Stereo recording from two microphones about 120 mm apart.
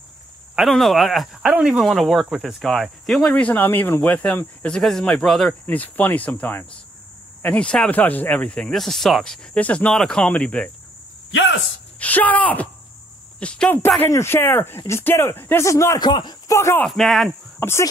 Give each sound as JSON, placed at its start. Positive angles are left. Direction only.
{"t": 0.6, "sound": "speech", "side_deg": 0}
{"t": 12.0, "sound": "speech", "side_deg": 15}
{"t": 16.0, "sound": "speech", "side_deg": 40}
{"t": 16.5, "sound": "speech", "side_deg": 25}
{"t": 16.8, "sound": "speech", "side_deg": 0}
{"t": 17.6, "sound": "speech", "side_deg": 20}